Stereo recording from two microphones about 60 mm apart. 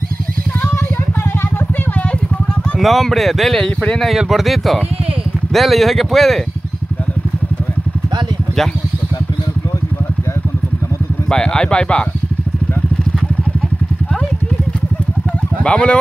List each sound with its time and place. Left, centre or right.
2.8 s speech: centre
4.3 s speech: centre
11.2 s speech: centre
15.6 s speech: centre